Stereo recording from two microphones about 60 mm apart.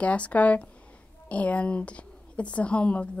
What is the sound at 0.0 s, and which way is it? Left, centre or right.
Speech, left.